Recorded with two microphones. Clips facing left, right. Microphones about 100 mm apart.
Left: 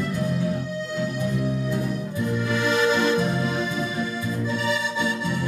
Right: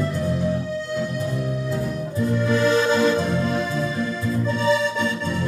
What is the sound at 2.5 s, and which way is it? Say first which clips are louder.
Music: right 3 dB; 25° right (ahead or behind).